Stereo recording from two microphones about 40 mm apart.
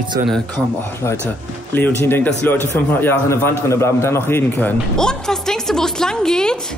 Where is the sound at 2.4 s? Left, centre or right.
Left.